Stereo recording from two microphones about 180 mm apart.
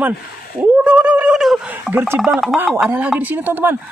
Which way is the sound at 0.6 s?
5° right (ahead or behind).